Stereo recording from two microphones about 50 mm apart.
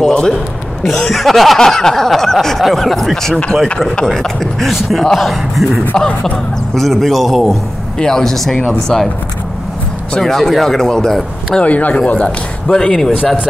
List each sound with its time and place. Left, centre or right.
0.0 s a man's voice: centre
5.9 s a man's voice: centre
10.2 s speech: centre
11.6 s speech: left
12.1 s speech: centre